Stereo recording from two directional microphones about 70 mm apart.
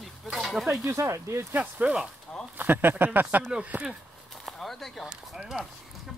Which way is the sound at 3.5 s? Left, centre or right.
Centre.